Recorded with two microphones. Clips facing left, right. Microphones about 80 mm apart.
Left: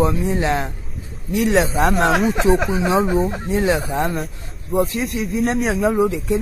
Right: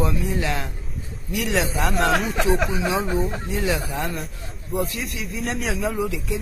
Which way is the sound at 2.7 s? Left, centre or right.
Left.